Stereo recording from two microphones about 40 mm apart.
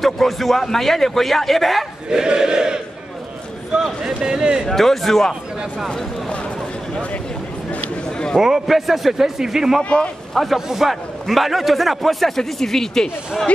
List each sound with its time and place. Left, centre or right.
0.0 s a man's voice: centre
2.0 s choir: centre
4.0 s speech: centre
4.6 s a man's voice: centre
8.4 s a man's voice: centre
9.8 s a man's voice: left
10.3 s a man's voice: centre